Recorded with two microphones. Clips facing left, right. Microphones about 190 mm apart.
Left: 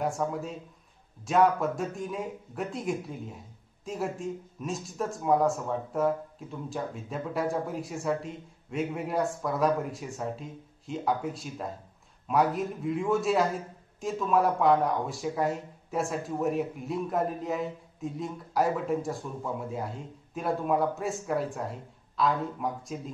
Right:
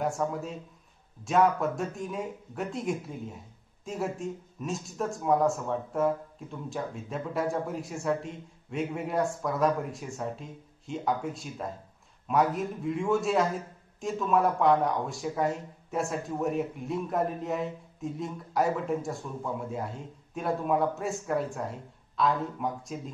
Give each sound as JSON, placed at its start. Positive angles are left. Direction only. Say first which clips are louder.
{"t": 0.0, "sound": "speech", "louder": "even", "side_deg": 0}